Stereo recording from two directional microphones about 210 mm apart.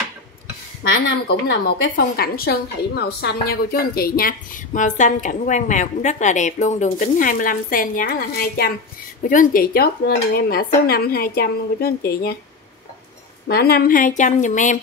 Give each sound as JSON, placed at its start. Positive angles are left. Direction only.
{"t": 1.0, "sound": "a woman's voice", "side_deg": 55}
{"t": 13.5, "sound": "a woman's voice", "side_deg": 50}